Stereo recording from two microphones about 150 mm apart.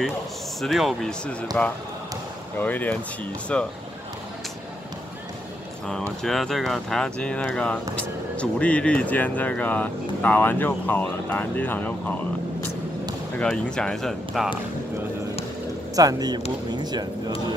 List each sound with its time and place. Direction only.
0.6 s speech: centre (ahead or behind)
6.2 s speech: centre (ahead or behind)
13.4 s speech: 5° left (ahead or behind)
16.0 s speech: 25° right (ahead or behind)